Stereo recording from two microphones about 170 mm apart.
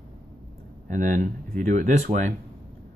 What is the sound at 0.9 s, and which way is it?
Speech, 50° right (ahead or behind).